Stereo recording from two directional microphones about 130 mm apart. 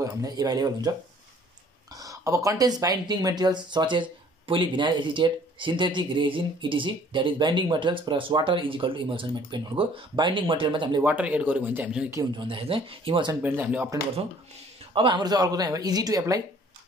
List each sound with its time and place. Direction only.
0.0 s speech: 30° right (ahead or behind)
2.0 s speech: 25° right (ahead or behind)
11.0 s speech: 10° right (ahead or behind)
12.4 s speech: 40° right (ahead or behind)
13.4 s speech: 15° right (ahead or behind)
15.0 s speech: 35° right (ahead or behind)